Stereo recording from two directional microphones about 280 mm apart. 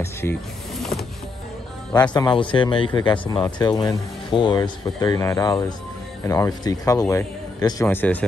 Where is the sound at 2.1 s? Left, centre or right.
Centre.